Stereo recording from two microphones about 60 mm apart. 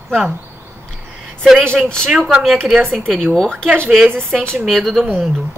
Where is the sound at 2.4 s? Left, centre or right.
Centre.